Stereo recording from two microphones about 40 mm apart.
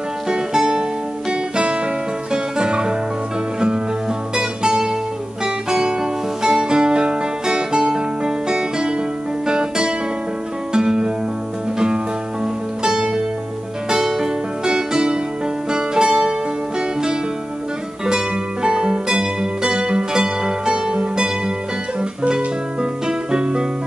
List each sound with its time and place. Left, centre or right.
0.3 s music: centre
2.3 s music: right
4.4 s guitar: centre
5.4 s music: centre
12.8 s music: centre
18.0 s music: centre
22.8 s music: centre